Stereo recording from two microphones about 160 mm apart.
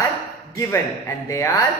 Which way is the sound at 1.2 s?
20° left (ahead or behind).